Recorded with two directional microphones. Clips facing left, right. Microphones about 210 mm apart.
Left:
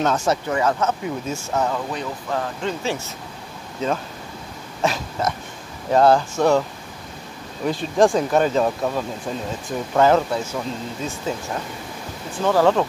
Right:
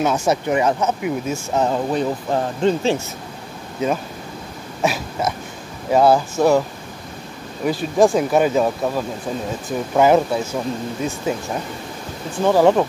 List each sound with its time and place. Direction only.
0.0 s speech: 10° right (ahead or behind)
1.6 s speech: 30° right (ahead or behind)
4.8 s a sound: 5° right (ahead or behind)
5.9 s speech: 5° right (ahead or behind)
7.6 s speech: 5° right (ahead or behind)